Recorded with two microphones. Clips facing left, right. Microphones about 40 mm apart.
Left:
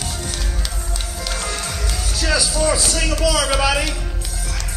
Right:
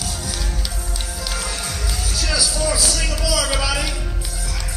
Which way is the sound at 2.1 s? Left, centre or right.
Centre.